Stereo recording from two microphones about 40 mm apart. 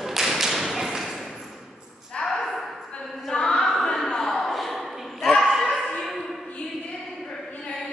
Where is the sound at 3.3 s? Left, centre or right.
Centre.